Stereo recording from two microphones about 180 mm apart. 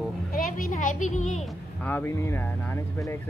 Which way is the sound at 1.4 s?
10° left (ahead or behind).